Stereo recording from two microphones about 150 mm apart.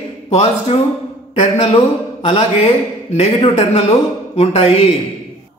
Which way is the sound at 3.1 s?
45° left (ahead or behind).